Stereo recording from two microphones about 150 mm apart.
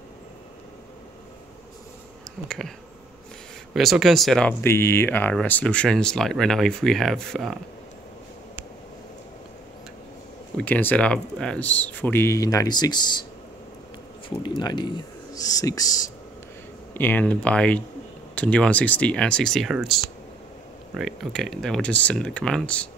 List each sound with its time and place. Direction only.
2.4 s speech: 5° left (ahead or behind)
3.7 s speech: centre (ahead or behind)
4.6 s speech: 15° left (ahead or behind)
10.6 s speech: 10° left (ahead or behind); by 13.2 s 30° left (ahead or behind)
14.4 s speech: 30° left (ahead or behind)
16.9 s speech: 10° left (ahead or behind)